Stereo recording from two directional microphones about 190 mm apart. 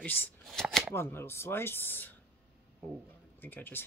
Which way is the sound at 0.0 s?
10° left (ahead or behind).